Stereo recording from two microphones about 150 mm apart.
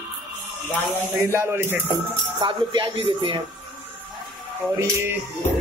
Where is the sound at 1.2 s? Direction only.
15° right (ahead or behind).